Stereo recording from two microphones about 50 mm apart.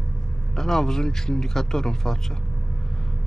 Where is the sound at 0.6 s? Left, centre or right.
Centre.